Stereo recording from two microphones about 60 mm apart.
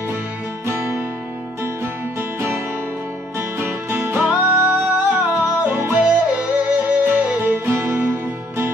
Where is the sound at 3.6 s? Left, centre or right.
Right.